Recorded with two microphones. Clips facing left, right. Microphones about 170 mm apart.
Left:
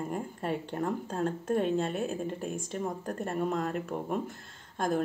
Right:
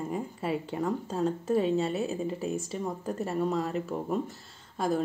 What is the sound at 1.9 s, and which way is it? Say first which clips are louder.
Speech: right 2 dB; 50° left (ahead or behind).